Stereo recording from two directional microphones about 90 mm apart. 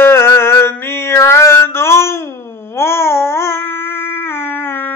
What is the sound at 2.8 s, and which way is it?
Babbling, 30° left (ahead or behind).